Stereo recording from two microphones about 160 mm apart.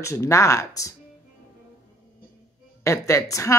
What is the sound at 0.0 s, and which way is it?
Speech, 20° left (ahead or behind).